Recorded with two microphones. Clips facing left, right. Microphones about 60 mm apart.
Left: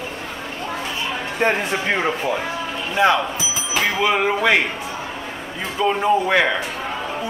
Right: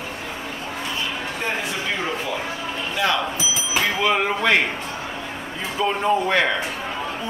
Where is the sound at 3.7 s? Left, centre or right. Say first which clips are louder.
Left 2 dB; centre.